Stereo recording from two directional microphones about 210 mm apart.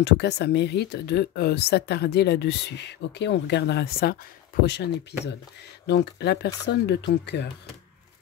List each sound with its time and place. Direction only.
0.0 s speech: 55° left (ahead or behind)